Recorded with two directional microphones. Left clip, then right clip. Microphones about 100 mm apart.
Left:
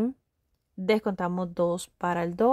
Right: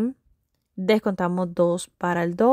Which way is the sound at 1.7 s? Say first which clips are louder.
Right 4 dB; 30° right (ahead or behind).